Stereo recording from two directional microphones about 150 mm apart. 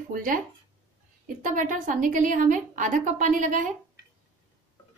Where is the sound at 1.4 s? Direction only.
60° right (ahead or behind).